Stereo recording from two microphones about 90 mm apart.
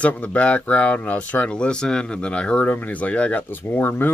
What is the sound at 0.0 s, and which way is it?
Speech, 15° left (ahead or behind).